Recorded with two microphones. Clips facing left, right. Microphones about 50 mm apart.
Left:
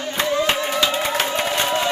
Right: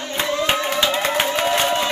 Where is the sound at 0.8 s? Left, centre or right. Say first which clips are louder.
Even; right.